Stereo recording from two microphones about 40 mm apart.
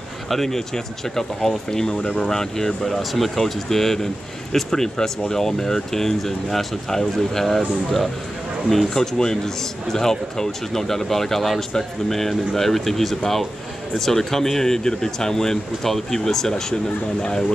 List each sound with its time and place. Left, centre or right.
0.3 s speech: centre
3.0 s speech: centre